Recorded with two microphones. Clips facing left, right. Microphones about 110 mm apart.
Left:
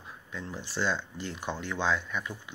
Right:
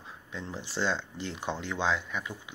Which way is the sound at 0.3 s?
25° right (ahead or behind).